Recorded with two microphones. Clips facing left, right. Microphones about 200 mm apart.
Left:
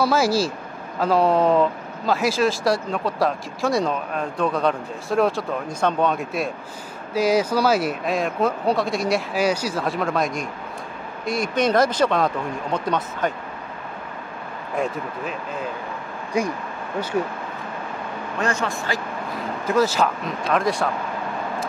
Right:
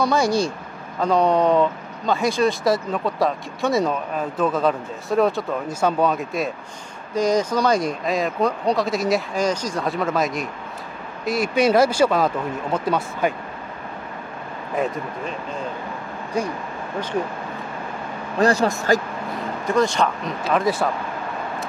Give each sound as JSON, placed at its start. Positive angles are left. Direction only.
{"t": 0.0, "sound": "speech", "side_deg": 5}
{"t": 18.4, "sound": "speech", "side_deg": -35}
{"t": 19.6, "sound": "speech", "side_deg": 5}